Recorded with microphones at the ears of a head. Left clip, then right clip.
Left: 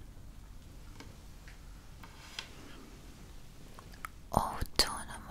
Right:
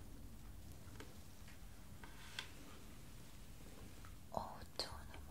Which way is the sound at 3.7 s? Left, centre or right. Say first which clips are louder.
Left 17 dB; left.